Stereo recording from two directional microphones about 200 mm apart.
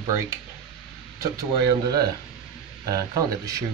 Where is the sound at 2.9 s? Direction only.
15° right (ahead or behind).